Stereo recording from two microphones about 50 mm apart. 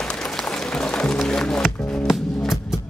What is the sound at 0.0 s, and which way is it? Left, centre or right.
Music, centre.